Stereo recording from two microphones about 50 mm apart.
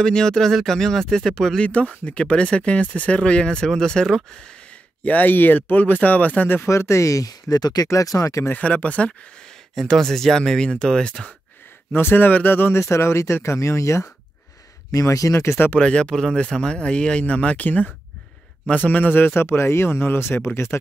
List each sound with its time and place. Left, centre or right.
0.0 s speech: centre
1.6 s speech: left
5.0 s speech: left
6.4 s speech: left
6.7 s speech: left
7.5 s speech: centre
7.9 s speech: left
8.5 s speech: left
9.8 s speech: centre
11.9 s a man's voice: left
12.7 s speech: left
15.8 s speech: centre
18.8 s a man's voice: left